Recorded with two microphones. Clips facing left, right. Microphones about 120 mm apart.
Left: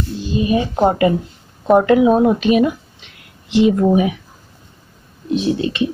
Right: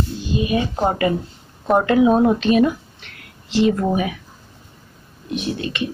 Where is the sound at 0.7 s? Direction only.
20° left (ahead or behind).